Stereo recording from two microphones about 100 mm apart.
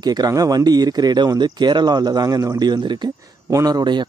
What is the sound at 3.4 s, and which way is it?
Speech, 35° right (ahead or behind).